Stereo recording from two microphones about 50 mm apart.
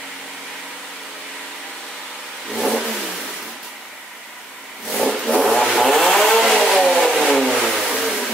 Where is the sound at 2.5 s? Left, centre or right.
Centre.